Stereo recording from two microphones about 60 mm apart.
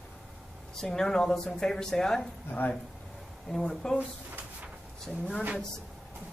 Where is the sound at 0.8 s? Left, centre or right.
Centre.